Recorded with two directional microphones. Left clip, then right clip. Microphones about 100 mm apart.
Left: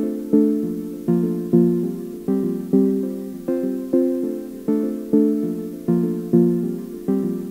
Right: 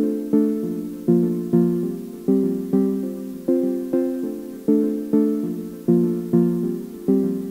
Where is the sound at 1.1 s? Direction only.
30° left (ahead or behind).